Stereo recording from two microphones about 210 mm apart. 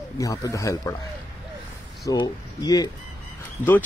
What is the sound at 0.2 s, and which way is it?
Speech, 15° left (ahead or behind).